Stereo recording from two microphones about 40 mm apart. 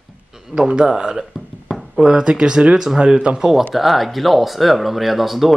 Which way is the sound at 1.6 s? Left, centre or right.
Centre.